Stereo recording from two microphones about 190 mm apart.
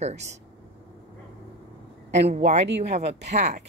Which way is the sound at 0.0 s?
35° right (ahead or behind).